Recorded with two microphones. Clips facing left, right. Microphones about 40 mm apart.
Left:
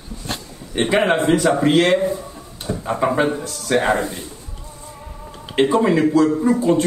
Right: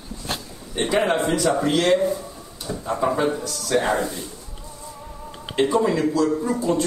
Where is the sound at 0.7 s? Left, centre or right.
Left.